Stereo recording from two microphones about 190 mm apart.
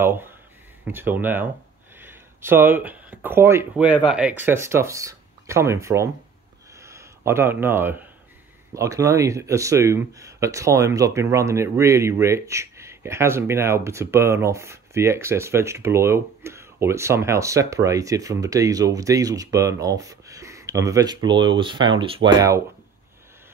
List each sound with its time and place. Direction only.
0.0 s speech: 10° right (ahead or behind)
6.8 s a sound: 15° right (ahead or behind)
8.7 s speech: 15° right (ahead or behind)